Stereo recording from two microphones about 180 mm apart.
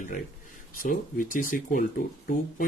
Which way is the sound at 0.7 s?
50° left (ahead or behind).